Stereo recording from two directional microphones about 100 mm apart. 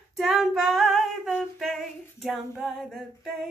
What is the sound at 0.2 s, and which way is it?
Female singing, 5° right (ahead or behind).